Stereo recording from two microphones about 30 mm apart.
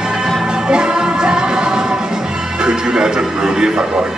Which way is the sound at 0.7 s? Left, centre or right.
Right.